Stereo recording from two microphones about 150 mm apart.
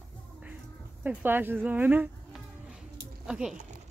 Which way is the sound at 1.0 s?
15° right (ahead or behind).